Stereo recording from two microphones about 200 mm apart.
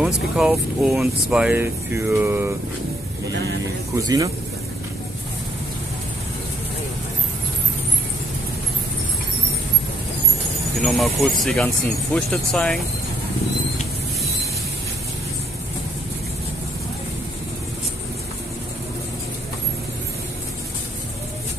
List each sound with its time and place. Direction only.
0.0 s speech: 5° right (ahead or behind)
3.9 s speech: 15° right (ahead or behind)
10.8 s speech: centre (ahead or behind)